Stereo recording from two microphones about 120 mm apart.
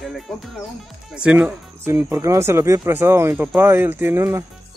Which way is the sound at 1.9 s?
20° right (ahead or behind).